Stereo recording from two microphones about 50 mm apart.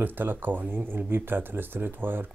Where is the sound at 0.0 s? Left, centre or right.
Right.